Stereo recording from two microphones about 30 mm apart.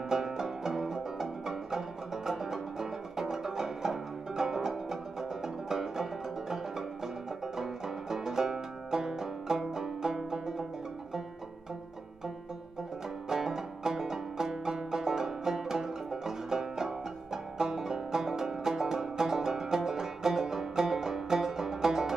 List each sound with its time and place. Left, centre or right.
0.1 s music: centre
7.5 s music: centre
13.3 s music: centre